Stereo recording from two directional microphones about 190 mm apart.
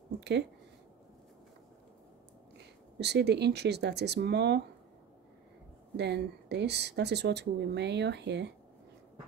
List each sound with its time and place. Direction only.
0.2 s speech: 65° right (ahead or behind)
3.0 s speech: 60° right (ahead or behind)
5.9 s speech: 65° right (ahead or behind)